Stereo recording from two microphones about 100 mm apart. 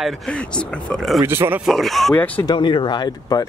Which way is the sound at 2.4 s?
50° left (ahead or behind).